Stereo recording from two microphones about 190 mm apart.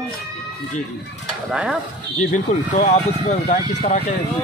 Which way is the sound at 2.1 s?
40° left (ahead or behind).